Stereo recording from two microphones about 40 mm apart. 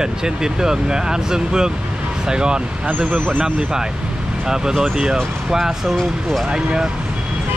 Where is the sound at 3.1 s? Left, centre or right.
Right.